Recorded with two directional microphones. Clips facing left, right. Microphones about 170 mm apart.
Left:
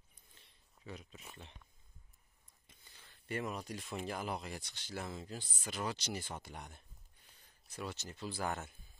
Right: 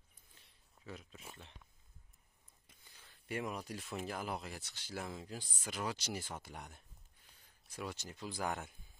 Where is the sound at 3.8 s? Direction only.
Centre (ahead or behind).